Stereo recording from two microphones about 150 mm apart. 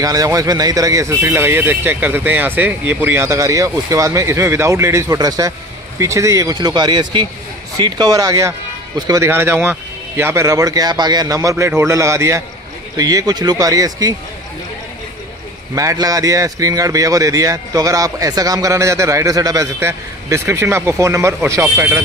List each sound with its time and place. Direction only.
0.0 s a man's voice: 25° right (ahead or behind)
15.7 s a man's voice: 20° right (ahead or behind)